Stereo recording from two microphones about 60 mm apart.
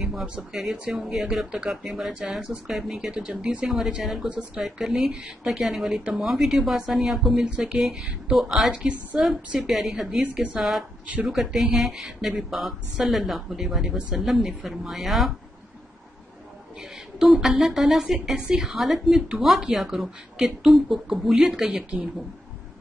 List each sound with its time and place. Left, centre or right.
0.0 s speech: centre
8.6 s speech: centre
10.2 s a woman's voice: right
11.2 s speech: centre
17.2 s speech: centre